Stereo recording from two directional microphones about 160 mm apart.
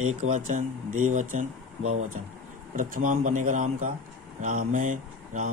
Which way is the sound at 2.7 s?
55° right (ahead or behind).